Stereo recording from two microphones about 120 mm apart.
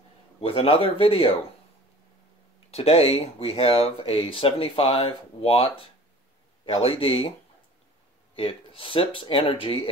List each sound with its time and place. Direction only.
0.4 s speech: 55° left (ahead or behind)
2.7 s speech: 55° left (ahead or behind)
6.6 s speech: 50° left (ahead or behind)
8.4 s speech: 50° left (ahead or behind)